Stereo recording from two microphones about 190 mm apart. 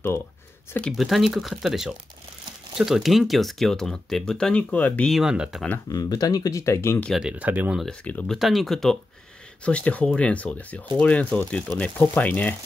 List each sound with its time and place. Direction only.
0.7 s speech: centre (ahead or behind)
5.9 s speech: 20° left (ahead or behind)
7.1 s speech: 5° right (ahead or behind)
7.8 s speech: 5° left (ahead or behind)